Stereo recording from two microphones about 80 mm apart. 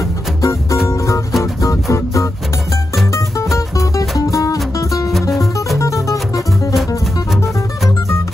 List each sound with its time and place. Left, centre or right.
0.4 s music: left
5.3 s music: centre
5.8 s music: left